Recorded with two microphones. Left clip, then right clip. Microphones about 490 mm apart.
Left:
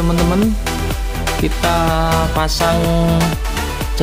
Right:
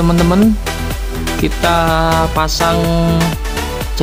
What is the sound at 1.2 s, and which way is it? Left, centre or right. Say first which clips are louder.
Music: right 2 dB; centre.